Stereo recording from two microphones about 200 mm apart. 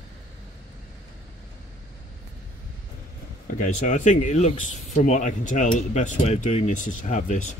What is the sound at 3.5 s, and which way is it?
Speech, 40° left (ahead or behind).